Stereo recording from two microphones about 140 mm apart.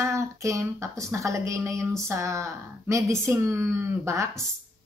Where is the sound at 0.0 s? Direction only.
20° right (ahead or behind).